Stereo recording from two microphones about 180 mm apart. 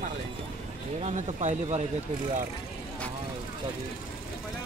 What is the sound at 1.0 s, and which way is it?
Speech, 40° right (ahead or behind).